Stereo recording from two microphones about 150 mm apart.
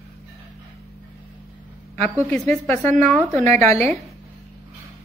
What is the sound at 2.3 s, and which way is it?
A woman's voice, 10° left (ahead or behind).